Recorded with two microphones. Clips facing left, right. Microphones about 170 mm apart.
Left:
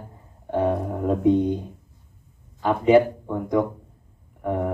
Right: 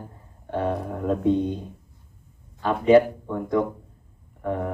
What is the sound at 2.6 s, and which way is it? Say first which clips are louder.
Speech: even; 15° left (ahead or behind).